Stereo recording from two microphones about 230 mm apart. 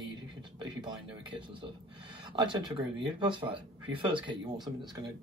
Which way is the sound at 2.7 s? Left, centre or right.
Right.